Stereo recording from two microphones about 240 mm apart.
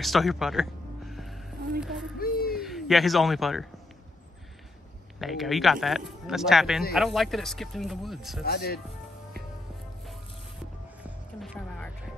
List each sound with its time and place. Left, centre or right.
0.0 s music: centre
1.8 s speech: centre
2.1 s a sound: left
2.5 s speech: centre
5.2 s speech: centre
8.5 s speech: left
11.1 s music: centre